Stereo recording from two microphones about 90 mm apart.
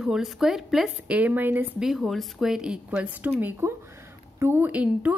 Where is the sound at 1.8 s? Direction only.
Centre (ahead or behind).